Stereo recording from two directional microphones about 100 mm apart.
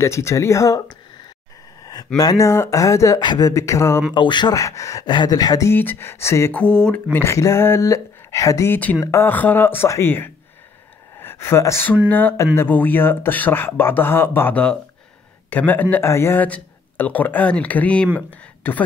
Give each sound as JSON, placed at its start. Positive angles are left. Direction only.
{"t": 0.0, "sound": "speech", "side_deg": 30}
{"t": 1.8, "sound": "a sound", "side_deg": 40}
{"t": 2.1, "sound": "speech", "side_deg": 35}
{"t": 3.2, "sound": "speech", "side_deg": 40}
{"t": 4.1, "sound": "speech", "side_deg": 50}
{"t": 5.0, "sound": "speech", "side_deg": 45}
{"t": 5.7, "sound": "speech", "side_deg": 20}
{"t": 6.5, "sound": "speech", "side_deg": 10}
{"t": 7.2, "sound": "speech", "side_deg": 30}
{"t": 9.3, "sound": "speech", "side_deg": 20}
{"t": 16.4, "sound": "speech", "side_deg": 15}